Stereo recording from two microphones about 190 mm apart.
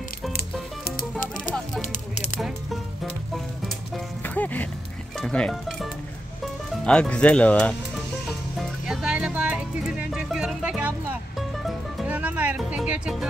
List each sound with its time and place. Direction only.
0.3 s music: 55° left (ahead or behind)
1.8 s a sound: 40° left (ahead or behind)
4.2 s music: 10° left (ahead or behind)
5.2 s speech: 5° left (ahead or behind)
8.5 s music: 5° right (ahead or behind)